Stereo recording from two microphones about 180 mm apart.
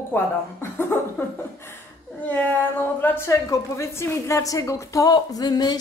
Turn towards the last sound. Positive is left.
turn(degrees=20)  # may be behind; listen again after turning